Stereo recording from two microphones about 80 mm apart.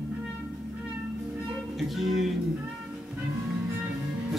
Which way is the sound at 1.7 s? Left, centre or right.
Centre.